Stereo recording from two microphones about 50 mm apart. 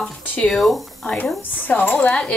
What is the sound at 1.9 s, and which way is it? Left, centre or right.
Speech, left.